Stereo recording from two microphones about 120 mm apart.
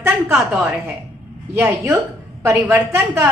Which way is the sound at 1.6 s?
20° right (ahead or behind).